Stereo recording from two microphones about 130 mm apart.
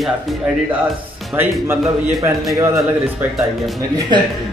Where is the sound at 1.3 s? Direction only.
15° right (ahead or behind).